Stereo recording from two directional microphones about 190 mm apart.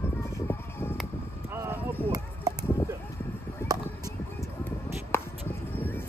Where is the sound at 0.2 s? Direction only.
10° left (ahead or behind).